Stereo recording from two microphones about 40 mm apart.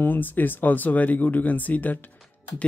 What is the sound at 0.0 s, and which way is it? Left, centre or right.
Speech, left.